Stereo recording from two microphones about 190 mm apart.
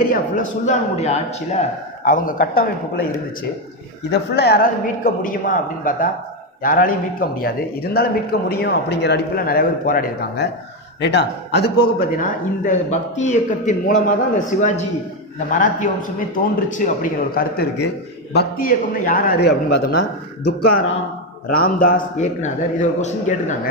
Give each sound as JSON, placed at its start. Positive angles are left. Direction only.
{"t": 0.1, "sound": "a man's voice", "side_deg": 40}
{"t": 2.0, "sound": "speech", "side_deg": 45}
{"t": 4.1, "sound": "speech", "side_deg": 60}
{"t": 5.0, "sound": "a man's voice", "side_deg": 45}